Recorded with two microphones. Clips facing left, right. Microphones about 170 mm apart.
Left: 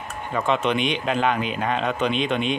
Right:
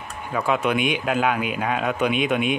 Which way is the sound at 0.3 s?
10° right (ahead or behind).